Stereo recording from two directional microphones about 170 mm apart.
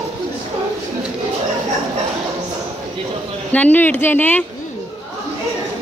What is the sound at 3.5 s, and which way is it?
Speech, 10° left (ahead or behind).